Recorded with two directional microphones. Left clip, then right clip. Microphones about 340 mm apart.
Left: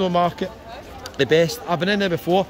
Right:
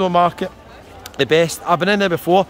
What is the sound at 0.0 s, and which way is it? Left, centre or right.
A man's voice, centre.